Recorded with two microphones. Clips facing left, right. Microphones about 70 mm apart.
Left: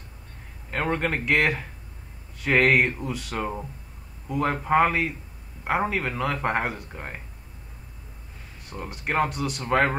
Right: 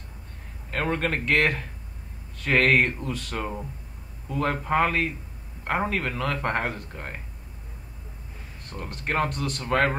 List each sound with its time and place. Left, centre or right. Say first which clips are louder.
0.7 s a man's voice: left 1 dB; centre
8.6 s speech: left 1 dB; centre